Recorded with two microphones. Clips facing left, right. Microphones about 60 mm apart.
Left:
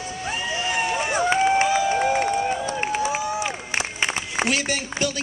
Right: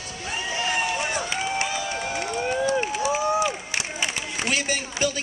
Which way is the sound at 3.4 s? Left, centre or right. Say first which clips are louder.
Left 1 dB; left.